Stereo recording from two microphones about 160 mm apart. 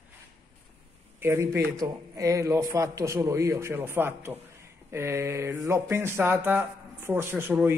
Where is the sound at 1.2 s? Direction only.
15° right (ahead or behind).